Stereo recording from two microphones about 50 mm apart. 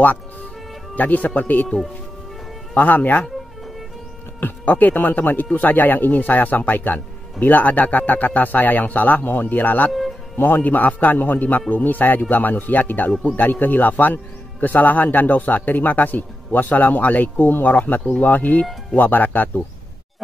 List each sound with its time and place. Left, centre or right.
0.9 s speech: left
2.7 s speech: left
4.4 s speech: left